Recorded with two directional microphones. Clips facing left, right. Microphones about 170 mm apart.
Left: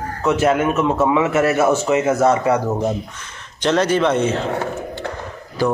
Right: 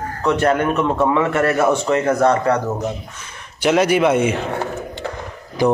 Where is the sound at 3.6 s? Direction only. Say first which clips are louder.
Right 2 dB; 10° right (ahead or behind).